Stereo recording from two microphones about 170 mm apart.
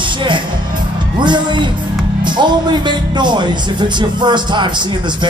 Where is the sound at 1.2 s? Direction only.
25° right (ahead or behind).